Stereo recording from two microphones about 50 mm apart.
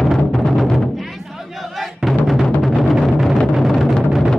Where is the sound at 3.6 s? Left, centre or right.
Centre.